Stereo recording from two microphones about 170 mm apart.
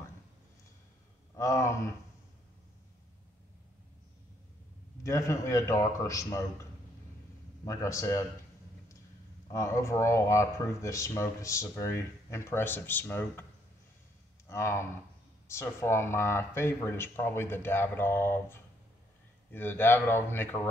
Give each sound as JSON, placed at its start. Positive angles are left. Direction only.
{"t": 1.3, "sound": "a sound", "side_deg": 20}
{"t": 5.0, "sound": "a man's voice", "side_deg": 20}
{"t": 9.5, "sound": "speech", "side_deg": 15}
{"t": 14.5, "sound": "speech", "side_deg": 15}